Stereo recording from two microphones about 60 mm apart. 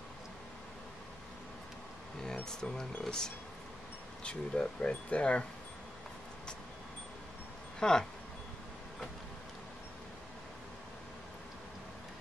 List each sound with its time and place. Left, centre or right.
2.2 s speech: centre
7.8 s speech: centre